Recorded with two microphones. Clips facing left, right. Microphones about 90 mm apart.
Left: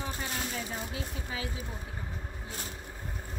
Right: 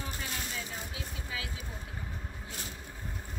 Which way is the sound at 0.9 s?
30° left (ahead or behind).